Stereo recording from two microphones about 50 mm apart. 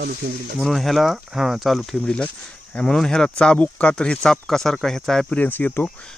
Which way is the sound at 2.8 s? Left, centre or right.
Centre.